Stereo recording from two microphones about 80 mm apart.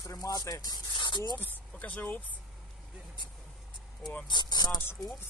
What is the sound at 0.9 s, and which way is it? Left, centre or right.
Speech, left.